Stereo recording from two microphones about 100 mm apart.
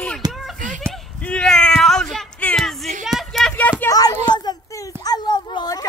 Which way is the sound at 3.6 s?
20° left (ahead or behind).